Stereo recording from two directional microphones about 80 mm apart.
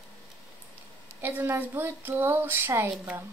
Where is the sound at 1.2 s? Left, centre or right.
Right.